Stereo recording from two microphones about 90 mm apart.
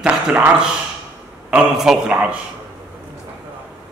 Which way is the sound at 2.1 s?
15° right (ahead or behind).